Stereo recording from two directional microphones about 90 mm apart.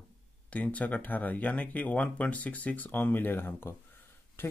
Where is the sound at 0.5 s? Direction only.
15° left (ahead or behind).